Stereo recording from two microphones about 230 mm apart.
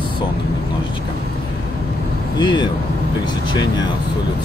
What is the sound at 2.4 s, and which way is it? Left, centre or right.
Speech, centre.